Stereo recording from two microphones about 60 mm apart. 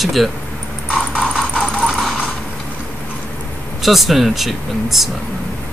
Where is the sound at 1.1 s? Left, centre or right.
Centre.